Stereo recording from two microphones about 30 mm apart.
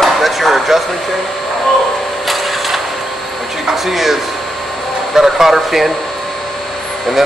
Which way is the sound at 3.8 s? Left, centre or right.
Centre.